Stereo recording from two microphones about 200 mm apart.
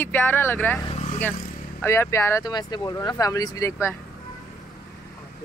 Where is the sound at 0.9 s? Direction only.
30° left (ahead or behind).